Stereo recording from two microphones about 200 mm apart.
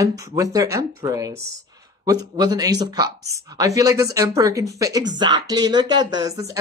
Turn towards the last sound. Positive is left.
turn(degrees=-20)  # may be behind; listen again after turning